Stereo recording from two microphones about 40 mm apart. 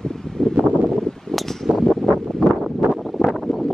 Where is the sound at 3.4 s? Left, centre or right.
Centre.